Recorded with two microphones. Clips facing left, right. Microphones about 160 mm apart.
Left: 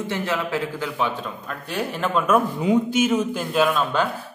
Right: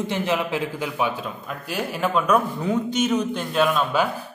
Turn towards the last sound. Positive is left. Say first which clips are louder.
# even
turn(degrees=-5)  # may be behind; listen again after turning